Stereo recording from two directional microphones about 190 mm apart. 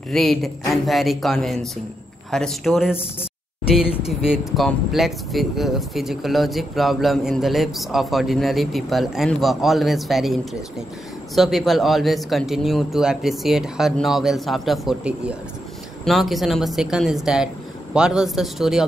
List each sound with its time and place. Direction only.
0.1 s speech: centre (ahead or behind)